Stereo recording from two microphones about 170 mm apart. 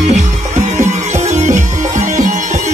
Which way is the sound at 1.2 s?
45° right (ahead or behind).